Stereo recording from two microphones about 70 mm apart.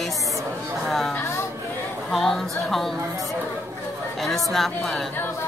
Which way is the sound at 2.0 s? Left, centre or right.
Centre.